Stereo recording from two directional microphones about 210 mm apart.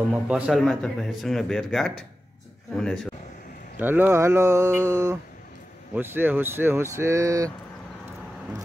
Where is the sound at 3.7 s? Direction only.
10° right (ahead or behind).